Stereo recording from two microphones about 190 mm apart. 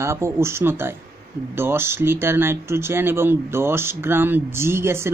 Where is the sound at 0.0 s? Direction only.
15° right (ahead or behind).